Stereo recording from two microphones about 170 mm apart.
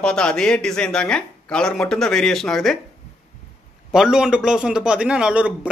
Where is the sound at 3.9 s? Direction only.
5° right (ahead or behind).